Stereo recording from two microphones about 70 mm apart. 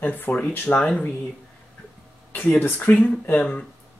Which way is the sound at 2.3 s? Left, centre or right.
Left.